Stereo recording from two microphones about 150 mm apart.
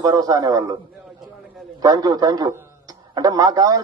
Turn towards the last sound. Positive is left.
turn(degrees=-25)  # may be behind; listen again after turning